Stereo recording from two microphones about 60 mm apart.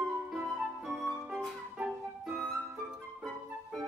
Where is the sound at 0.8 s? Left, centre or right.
Centre.